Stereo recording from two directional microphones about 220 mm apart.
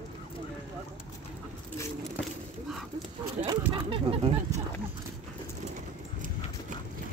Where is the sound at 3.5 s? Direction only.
25° right (ahead or behind).